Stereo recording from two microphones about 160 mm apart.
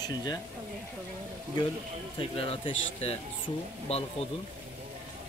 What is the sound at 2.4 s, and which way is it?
Speech, 35° left (ahead or behind).